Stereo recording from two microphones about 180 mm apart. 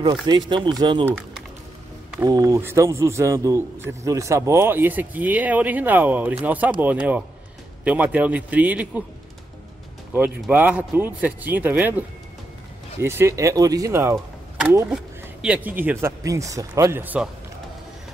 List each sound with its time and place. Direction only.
0.5 s speech: 25° right (ahead or behind)
2.1 s a man's voice: 20° right (ahead or behind)
10.4 s a man's voice: 10° right (ahead or behind)
13.0 s a man's voice: 15° right (ahead or behind)
14.1 s vehicle: 10° right (ahead or behind)
15.4 s a man's voice: 10° right (ahead or behind)